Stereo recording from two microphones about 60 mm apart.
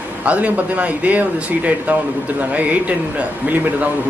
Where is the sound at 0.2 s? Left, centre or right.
Right.